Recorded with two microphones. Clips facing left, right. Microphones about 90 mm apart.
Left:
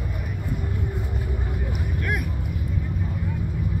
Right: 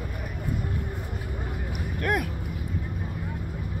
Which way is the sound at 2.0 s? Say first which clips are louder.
Right 4 dB; 55° right (ahead or behind).